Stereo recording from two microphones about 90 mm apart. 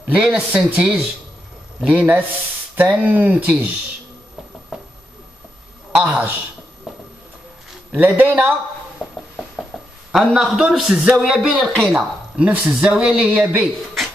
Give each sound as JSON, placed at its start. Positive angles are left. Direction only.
{"t": 0.0, "sound": "speech", "side_deg": -10}
{"t": 4.7, "sound": "a sound", "side_deg": -5}
{"t": 5.9, "sound": "speech", "side_deg": -15}
{"t": 7.9, "sound": "speech", "side_deg": -20}
{"t": 9.0, "sound": "a sound", "side_deg": 20}
{"t": 10.3, "sound": "speech", "side_deg": -5}
{"t": 12.4, "sound": "speech", "side_deg": -15}